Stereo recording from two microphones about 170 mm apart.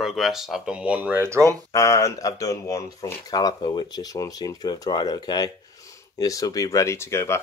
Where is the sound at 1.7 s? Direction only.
20° left (ahead or behind).